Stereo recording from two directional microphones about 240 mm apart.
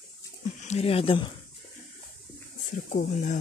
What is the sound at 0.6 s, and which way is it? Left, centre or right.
Speech, left.